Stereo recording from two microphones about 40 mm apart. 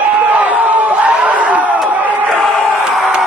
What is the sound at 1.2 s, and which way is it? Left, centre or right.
Crowd, right.